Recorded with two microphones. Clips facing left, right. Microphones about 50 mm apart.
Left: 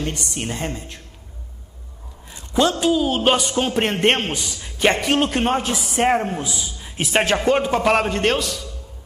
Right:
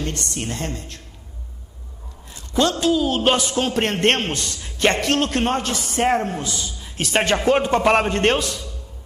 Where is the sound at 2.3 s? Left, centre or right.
Centre.